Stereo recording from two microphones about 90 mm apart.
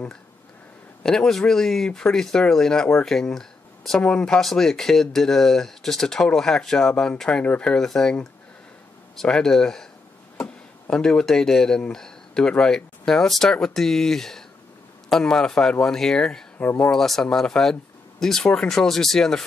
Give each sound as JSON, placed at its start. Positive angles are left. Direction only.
{"t": 1.0, "sound": "a man's voice", "side_deg": 5}
{"t": 16.5, "sound": "speech", "side_deg": 20}
{"t": 16.9, "sound": "speech", "side_deg": 5}